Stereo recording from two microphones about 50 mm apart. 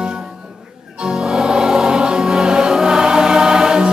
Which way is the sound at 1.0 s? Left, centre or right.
Centre.